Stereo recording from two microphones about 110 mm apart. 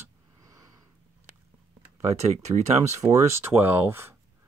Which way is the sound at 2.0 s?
90° right.